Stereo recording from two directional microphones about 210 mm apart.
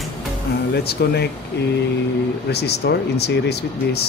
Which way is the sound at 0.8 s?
50° left (ahead or behind).